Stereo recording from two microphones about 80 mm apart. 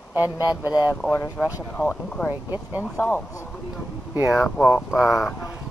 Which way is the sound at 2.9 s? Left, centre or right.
Left.